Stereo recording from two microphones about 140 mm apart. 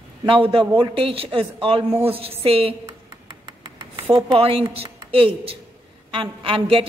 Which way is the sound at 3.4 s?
30° right (ahead or behind).